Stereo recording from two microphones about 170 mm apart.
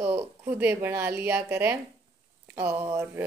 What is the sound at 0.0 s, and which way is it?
A woman's voice, 10° right (ahead or behind).